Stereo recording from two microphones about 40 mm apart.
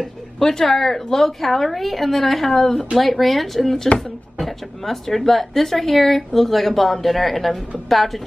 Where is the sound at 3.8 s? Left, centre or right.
Left.